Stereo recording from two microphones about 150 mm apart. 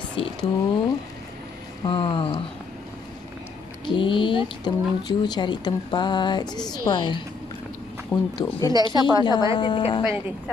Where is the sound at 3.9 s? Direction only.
35° left (ahead or behind).